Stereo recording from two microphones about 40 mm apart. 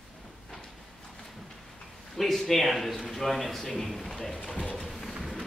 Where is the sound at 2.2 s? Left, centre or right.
Centre.